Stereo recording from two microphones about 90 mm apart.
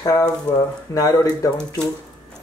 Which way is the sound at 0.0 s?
35° left (ahead or behind).